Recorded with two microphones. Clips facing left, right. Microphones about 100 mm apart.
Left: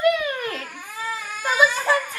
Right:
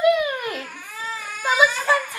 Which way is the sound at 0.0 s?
15° right (ahead or behind).